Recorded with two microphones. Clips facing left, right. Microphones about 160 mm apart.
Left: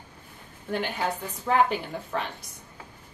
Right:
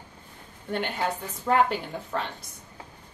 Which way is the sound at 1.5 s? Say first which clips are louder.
Even; 10° left (ahead or behind).